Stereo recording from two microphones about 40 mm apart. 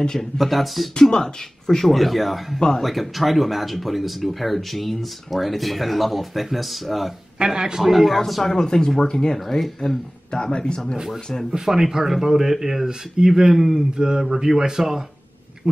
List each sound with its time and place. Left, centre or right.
0.2 s speech: centre
0.9 s speech: centre
7.3 s speech: centre
7.9 s speech: centre
8.5 s speech: centre
10.3 s speech: centre
11.5 s speech: centre